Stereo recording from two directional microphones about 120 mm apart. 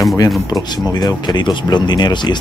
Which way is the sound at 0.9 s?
35° left (ahead or behind).